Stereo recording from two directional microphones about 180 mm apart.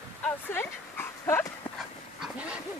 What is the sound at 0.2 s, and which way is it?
Dog, 10° left (ahead or behind).